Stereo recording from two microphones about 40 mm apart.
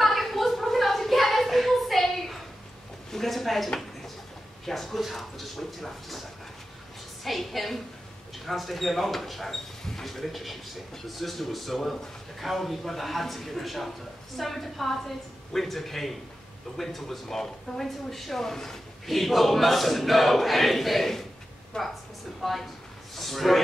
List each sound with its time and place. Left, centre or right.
0.0 s a sound: centre
4.6 s speech: centre
7.2 s speech: centre
21.7 s a woman's voice: left
22.4 s a man's voice: centre